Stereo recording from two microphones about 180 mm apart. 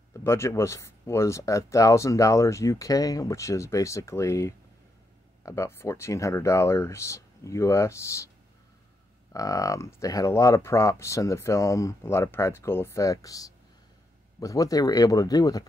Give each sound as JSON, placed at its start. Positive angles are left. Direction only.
{"t": 0.1, "sound": "speech", "side_deg": 15}
{"t": 9.3, "sound": "speech", "side_deg": 20}